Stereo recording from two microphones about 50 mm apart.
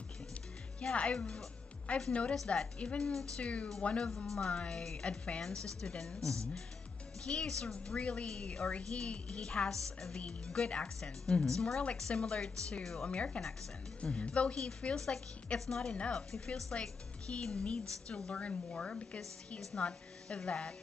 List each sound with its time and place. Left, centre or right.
0.7 s speech: left
2.3 s speech: centre
3.3 s speech: left
12.8 s speech: centre
13.1 s speech: left